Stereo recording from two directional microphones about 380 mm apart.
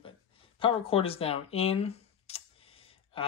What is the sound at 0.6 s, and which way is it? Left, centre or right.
Speech, centre.